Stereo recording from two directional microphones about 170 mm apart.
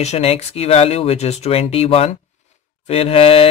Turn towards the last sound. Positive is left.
turn(degrees=35)  # may be behind; listen again after turning